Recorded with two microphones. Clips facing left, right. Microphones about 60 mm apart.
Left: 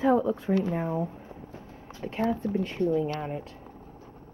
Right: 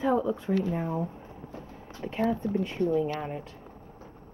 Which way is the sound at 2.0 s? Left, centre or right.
Centre.